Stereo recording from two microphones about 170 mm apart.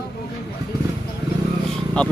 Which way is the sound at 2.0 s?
5° left (ahead or behind).